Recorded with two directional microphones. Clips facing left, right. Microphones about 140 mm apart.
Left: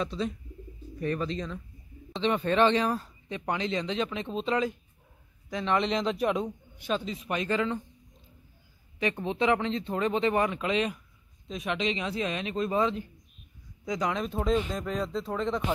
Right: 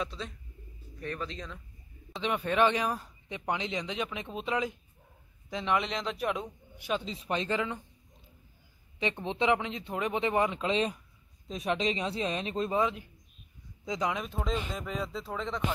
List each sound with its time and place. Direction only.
0.0 s speech: centre (ahead or behind); by 5.8 s 20° right (ahead or behind)
5.8 s speech: centre (ahead or behind)
7.1 s speech: 25° right (ahead or behind)
9.2 s speech: 20° right (ahead or behind)
12.7 s speech: 10° right (ahead or behind)
13.8 s speech: 20° right (ahead or behind)
14.1 s speech: centre (ahead or behind)